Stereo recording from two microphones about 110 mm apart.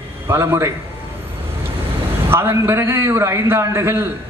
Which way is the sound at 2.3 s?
20° right (ahead or behind).